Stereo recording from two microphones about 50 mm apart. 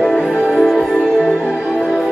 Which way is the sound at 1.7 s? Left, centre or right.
Centre.